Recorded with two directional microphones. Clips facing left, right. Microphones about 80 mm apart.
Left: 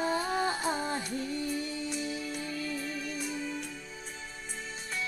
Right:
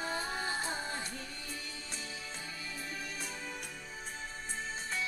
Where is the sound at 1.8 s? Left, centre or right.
Right.